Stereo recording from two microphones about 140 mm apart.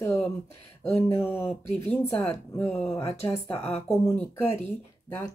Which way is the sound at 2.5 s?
10° left (ahead or behind).